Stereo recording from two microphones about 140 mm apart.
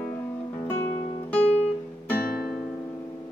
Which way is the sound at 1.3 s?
10° left (ahead or behind).